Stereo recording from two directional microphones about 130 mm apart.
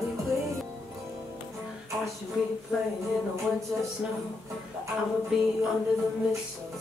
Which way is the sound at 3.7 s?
20° right (ahead or behind).